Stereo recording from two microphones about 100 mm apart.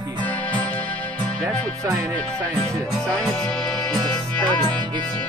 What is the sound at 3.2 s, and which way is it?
Music, 5° left (ahead or behind).